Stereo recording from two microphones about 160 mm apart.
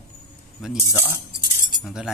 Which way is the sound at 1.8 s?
5° right (ahead or behind).